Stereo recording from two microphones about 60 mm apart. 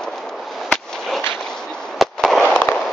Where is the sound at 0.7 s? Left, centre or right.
Centre.